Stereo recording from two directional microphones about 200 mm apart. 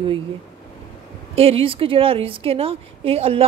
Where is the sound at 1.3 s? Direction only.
30° right (ahead or behind).